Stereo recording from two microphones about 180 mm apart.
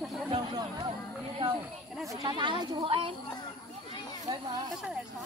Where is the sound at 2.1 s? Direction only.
25° right (ahead or behind).